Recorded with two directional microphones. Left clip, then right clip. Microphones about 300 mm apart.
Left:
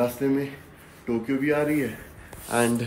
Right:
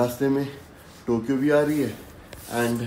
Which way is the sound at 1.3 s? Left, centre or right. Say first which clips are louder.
Right 3 dB; centre.